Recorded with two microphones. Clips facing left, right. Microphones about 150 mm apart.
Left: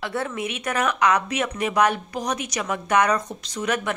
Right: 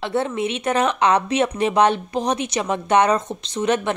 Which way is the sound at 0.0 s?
25° right (ahead or behind).